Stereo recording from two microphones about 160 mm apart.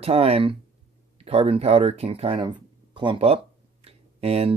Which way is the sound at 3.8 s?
40° right (ahead or behind).